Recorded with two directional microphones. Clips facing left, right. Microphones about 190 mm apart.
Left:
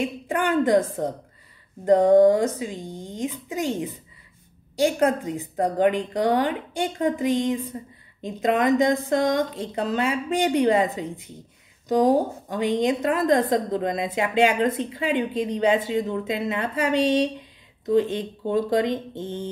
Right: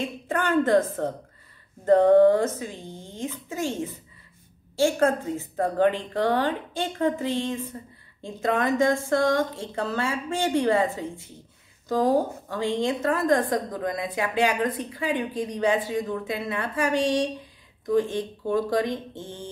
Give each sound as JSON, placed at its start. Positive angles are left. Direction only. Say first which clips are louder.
{"t": 0.0, "sound": "a woman's voice", "louder": "left 3 dB", "side_deg": 15}